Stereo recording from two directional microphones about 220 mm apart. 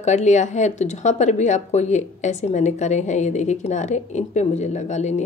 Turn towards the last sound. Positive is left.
turn(degrees=30)  # may be behind; listen again after turning